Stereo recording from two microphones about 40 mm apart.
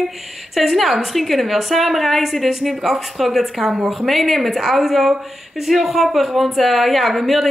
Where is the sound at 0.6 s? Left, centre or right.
Centre.